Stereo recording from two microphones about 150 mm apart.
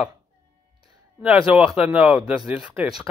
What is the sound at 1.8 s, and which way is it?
Speech, 5° right (ahead or behind).